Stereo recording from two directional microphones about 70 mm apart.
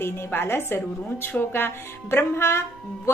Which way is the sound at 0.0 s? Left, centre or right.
Left.